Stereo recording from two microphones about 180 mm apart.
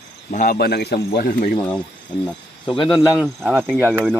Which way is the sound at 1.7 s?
5° left (ahead or behind).